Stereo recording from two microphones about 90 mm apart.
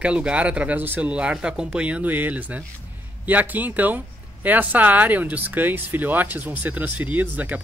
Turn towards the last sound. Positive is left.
turn(degrees=-15)  # may be behind; listen again after turning